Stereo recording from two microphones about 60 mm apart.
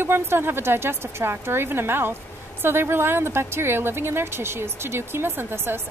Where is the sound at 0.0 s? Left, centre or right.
Right.